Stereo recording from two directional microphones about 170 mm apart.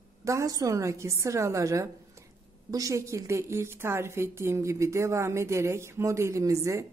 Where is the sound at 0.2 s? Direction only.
20° right (ahead or behind).